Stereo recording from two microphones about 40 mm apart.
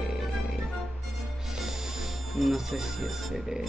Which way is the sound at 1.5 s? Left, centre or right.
Centre.